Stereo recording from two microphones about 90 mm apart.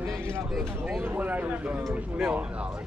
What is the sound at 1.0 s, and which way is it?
Speech, 20° right (ahead or behind).